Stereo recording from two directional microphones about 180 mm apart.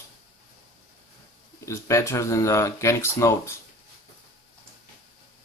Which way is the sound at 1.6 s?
15° left (ahead or behind).